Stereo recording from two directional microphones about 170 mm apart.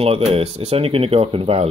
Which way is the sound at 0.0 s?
35° right (ahead or behind).